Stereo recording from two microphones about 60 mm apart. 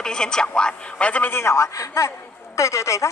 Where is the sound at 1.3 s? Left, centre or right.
Left.